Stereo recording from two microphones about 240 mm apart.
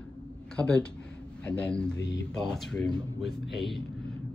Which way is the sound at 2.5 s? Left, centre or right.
Centre.